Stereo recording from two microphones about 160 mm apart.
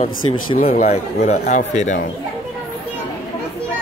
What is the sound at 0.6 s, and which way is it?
Speech, 55° left (ahead or behind).